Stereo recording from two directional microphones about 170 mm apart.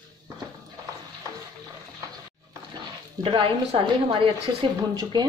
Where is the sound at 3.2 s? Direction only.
30° right (ahead or behind).